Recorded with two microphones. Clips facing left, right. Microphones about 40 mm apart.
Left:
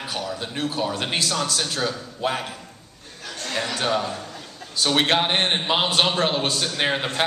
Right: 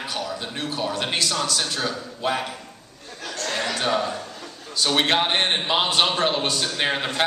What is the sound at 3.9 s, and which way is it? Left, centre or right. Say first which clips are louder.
A man's voice: right 1 dB; centre.